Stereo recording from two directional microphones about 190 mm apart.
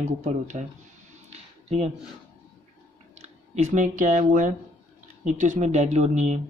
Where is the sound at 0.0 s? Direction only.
40° right (ahead or behind).